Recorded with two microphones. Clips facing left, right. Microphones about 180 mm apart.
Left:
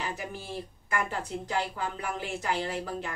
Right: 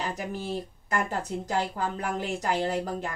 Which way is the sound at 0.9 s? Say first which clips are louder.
Right 3 dB; 40° right (ahead or behind).